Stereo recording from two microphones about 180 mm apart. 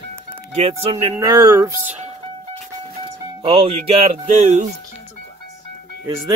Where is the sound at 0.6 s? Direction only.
35° right (ahead or behind).